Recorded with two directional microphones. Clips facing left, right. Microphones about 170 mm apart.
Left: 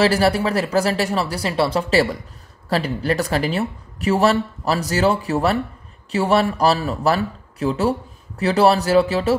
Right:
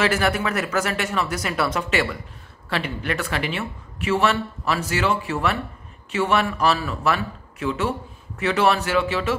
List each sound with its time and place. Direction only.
0.0 s speech: 35° left (ahead or behind)